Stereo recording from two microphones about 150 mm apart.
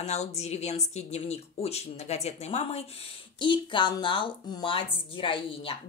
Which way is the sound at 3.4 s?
30° left (ahead or behind).